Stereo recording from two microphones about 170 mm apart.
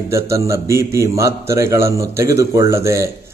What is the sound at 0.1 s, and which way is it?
A man's voice, 15° right (ahead or behind).